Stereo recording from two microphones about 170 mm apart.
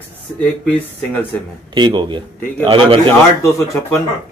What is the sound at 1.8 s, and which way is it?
Speech, 25° right (ahead or behind).